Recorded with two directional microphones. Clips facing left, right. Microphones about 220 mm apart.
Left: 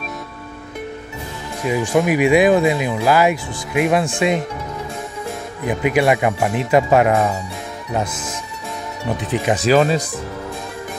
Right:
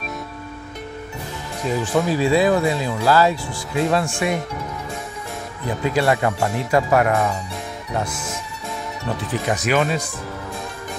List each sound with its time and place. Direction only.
1.7 s speech: 10° left (ahead or behind)
5.7 s speech: 15° left (ahead or behind)
9.1 s speech: 20° left (ahead or behind)
9.6 s speech: 35° left (ahead or behind)